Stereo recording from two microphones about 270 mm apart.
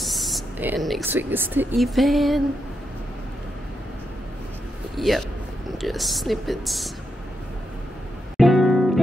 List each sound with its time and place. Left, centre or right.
0.0 s speech: centre
4.9 s a sound: centre
5.7 s speech: centre
8.4 s music: centre